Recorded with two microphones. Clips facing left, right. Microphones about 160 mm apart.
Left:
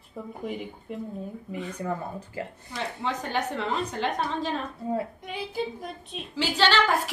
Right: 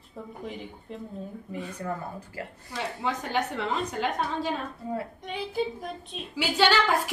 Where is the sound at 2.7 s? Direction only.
5° right (ahead or behind).